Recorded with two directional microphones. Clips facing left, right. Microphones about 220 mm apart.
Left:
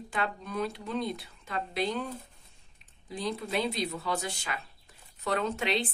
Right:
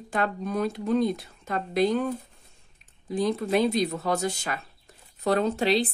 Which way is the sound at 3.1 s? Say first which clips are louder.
Right 8 dB; 50° right (ahead or behind).